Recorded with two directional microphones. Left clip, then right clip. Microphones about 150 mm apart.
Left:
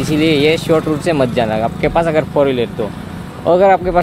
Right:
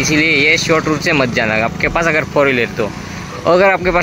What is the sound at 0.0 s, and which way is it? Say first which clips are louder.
Speech: right 1 dB; 15° left (ahead or behind).